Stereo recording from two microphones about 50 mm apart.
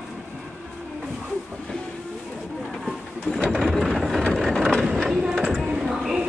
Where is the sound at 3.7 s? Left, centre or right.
Centre.